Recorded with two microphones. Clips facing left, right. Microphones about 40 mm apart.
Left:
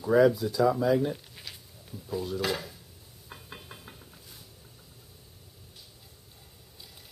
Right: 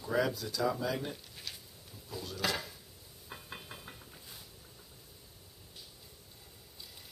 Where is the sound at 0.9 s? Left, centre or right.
Centre.